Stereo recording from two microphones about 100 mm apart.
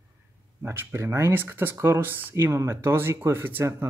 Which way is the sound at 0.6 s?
25° right (ahead or behind).